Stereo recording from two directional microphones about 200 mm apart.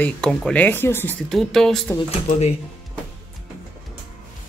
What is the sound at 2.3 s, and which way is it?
Speech, 35° left (ahead or behind).